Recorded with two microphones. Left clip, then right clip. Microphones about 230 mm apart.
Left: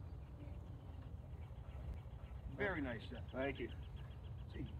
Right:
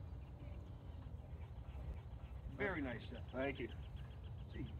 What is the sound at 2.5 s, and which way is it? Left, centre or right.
Speech, left.